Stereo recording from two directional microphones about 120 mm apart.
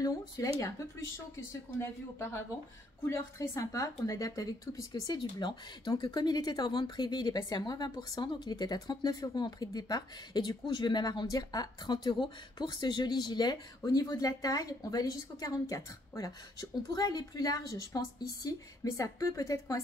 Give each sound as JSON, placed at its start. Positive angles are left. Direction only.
{"t": 0.4, "sound": "speech", "side_deg": 30}